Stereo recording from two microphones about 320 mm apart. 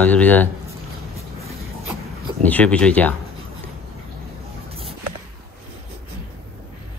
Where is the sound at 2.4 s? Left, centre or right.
Centre.